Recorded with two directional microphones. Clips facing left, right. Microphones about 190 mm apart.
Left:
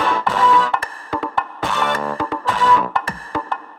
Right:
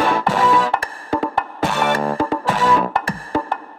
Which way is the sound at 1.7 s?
10° right (ahead or behind).